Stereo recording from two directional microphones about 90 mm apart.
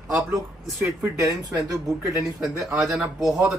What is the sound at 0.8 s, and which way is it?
Speech, 30° right (ahead or behind).